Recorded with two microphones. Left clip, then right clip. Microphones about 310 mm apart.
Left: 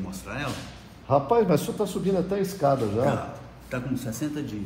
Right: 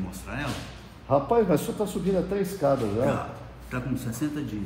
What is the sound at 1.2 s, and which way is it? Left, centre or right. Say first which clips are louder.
Speech: left 1 dB; centre.